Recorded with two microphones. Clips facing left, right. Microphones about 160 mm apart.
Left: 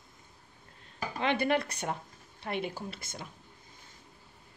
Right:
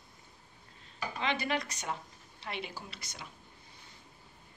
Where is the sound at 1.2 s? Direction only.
55° left (ahead or behind).